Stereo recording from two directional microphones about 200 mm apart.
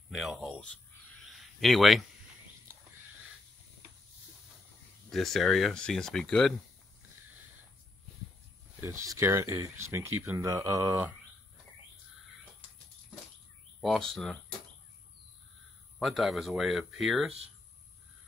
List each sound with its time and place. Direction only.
0.1 s speech: centre (ahead or behind)
1.3 s a sound: centre (ahead or behind)
5.1 s speech: centre (ahead or behind)
8.8 s speech: 15° right (ahead or behind)
13.7 s speech: centre (ahead or behind)
16.0 s speech: centre (ahead or behind)